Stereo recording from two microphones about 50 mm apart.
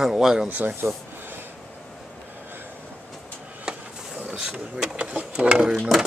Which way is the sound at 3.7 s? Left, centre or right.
Centre.